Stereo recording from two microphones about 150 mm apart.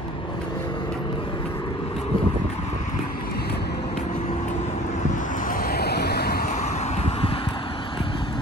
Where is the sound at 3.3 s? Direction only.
90° left.